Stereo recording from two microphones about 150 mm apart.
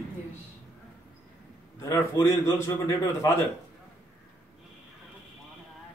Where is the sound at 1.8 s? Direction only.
20° left (ahead or behind).